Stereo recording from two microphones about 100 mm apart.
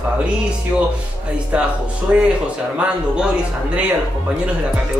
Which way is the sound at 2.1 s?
15° right (ahead or behind).